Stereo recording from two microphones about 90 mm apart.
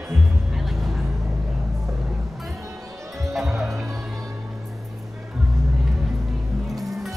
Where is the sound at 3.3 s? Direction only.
Centre (ahead or behind).